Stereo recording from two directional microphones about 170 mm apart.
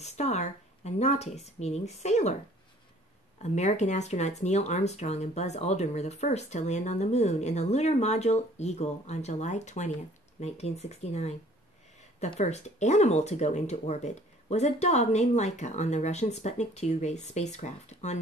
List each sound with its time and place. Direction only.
0.0 s speech: 40° left (ahead or behind)
3.4 s speech: 45° left (ahead or behind)